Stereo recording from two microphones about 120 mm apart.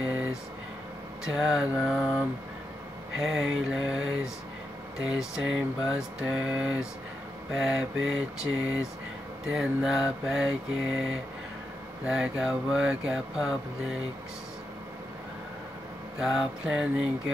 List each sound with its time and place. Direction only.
0.0 s a sound: 5° right (ahead or behind)
1.2 s mantra: 5° right (ahead or behind)
5.0 s speech: 5° right (ahead or behind)
7.5 s mantra: 5° right (ahead or behind)
9.5 s mantra: 5° right (ahead or behind)
12.1 s mantra: 5° right (ahead or behind)
16.2 s mantra: 5° right (ahead or behind)